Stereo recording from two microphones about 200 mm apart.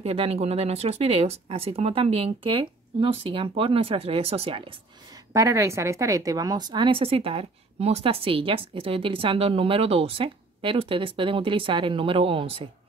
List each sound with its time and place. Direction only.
0.0 s speech: 30° right (ahead or behind)
5.3 s speech: 15° right (ahead or behind)